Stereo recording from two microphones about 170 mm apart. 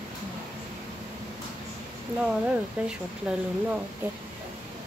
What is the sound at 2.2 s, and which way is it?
Speech, 5° right (ahead or behind).